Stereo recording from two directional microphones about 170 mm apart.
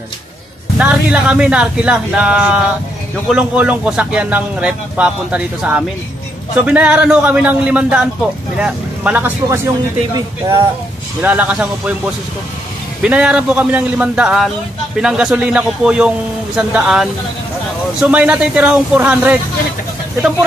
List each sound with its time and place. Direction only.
0.7 s a man's voice: 5° right (ahead or behind)
13.0 s a man's voice: 5° right (ahead or behind)